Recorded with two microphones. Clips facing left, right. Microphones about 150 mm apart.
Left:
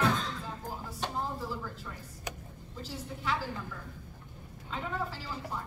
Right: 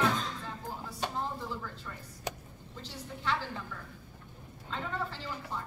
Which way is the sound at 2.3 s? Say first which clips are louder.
Right 3 dB; 30° right (ahead or behind).